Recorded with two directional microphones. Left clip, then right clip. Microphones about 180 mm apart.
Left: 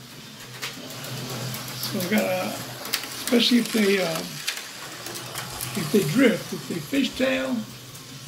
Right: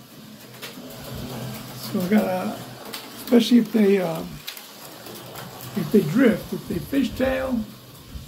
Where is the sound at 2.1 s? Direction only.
10° right (ahead or behind).